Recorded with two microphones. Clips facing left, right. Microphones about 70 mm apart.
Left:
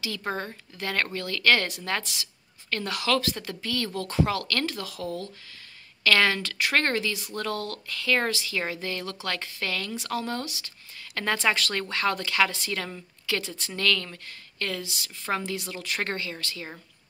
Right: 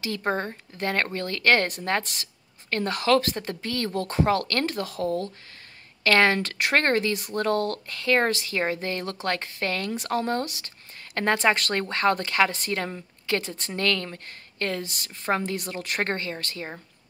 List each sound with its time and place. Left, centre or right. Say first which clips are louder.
0.0 s a woman's voice: right 4 dB; right